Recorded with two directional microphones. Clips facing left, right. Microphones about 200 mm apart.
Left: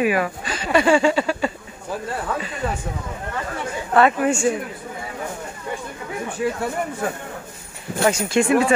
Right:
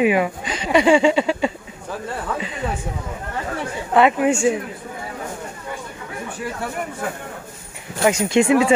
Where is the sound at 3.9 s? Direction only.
15° right (ahead or behind).